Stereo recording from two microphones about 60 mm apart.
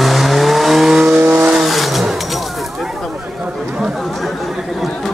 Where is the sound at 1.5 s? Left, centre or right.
Centre.